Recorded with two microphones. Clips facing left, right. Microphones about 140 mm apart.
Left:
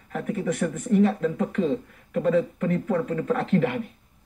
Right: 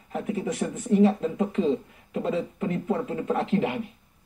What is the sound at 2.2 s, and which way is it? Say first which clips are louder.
Speech: left 5 dB; 25° right (ahead or behind).